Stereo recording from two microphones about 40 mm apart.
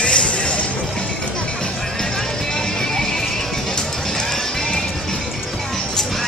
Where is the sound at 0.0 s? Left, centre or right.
Left.